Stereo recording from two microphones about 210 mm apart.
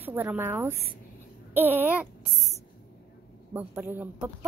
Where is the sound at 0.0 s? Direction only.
10° right (ahead or behind).